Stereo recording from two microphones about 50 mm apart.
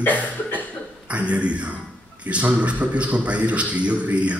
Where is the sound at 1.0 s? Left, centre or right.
Right.